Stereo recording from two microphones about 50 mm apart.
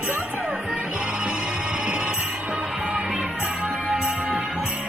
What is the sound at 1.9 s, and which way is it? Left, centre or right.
Music, right.